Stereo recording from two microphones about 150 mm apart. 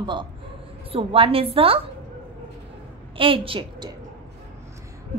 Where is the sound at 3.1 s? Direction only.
35° right (ahead or behind).